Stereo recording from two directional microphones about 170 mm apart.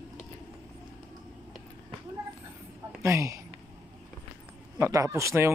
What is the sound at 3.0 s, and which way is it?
Speech, 20° right (ahead or behind).